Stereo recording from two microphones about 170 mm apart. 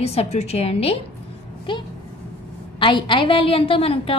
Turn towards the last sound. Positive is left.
turn(degrees=35)  # may be behind; listen again after turning